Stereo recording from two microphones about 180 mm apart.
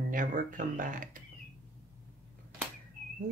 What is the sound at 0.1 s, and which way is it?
Speech, 45° right (ahead or behind).